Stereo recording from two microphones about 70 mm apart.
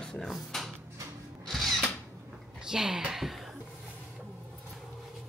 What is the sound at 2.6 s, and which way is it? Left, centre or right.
Speech, centre.